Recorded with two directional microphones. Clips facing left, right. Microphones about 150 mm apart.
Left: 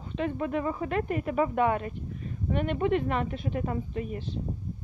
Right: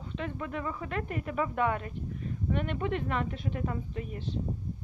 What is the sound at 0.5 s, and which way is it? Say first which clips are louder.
Speech: left 6 dB; 30° left (ahead or behind).